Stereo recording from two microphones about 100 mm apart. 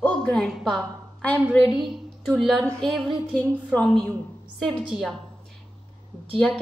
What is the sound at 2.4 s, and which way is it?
Speech, centre (ahead or behind).